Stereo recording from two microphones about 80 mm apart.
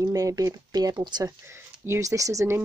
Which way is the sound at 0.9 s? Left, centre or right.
Right.